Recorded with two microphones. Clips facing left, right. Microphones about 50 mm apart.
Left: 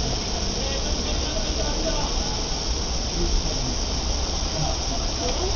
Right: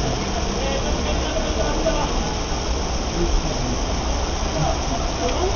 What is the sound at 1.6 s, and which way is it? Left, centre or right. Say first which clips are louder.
Vehicle: right 6 dB; right.